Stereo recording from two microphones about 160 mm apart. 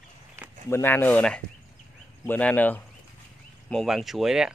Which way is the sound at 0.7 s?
15° left (ahead or behind).